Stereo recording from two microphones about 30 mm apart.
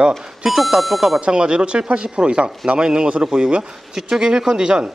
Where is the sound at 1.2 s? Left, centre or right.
Right.